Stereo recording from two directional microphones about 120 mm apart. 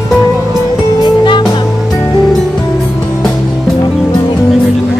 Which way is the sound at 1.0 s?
40° left (ahead or behind).